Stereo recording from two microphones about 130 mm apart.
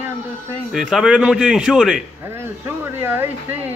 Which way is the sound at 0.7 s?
5° right (ahead or behind).